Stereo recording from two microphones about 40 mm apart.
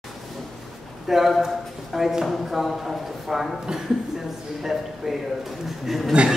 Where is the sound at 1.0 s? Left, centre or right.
Centre.